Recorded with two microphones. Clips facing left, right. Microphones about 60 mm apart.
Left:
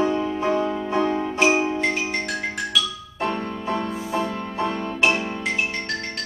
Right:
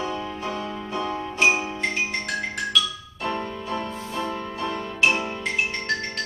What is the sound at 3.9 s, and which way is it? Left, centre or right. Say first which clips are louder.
Music: left 5 dB; centre.